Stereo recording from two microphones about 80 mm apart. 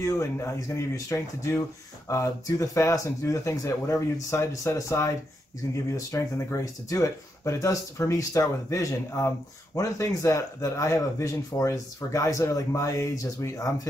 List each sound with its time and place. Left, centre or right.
0.0 s speech: left